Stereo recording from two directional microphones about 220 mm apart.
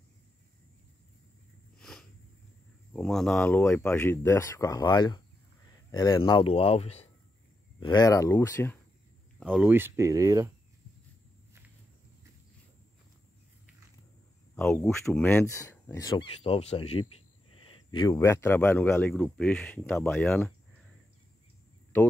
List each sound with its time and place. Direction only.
1.8 s a sound: 5° left (ahead or behind)
2.9 s a man's voice: centre (ahead or behind); by 7.1 s 30° left (ahead or behind)
7.8 s speech: 20° left (ahead or behind)
9.4 s speech: centre (ahead or behind)
9.7 s speech: 10° right (ahead or behind)
14.5 s speech: 10° left (ahead or behind)
16.3 s a man's voice: 25° left (ahead or behind)
17.0 s cricket: 25° left (ahead or behind)
17.9 s speech: 15° left (ahead or behind)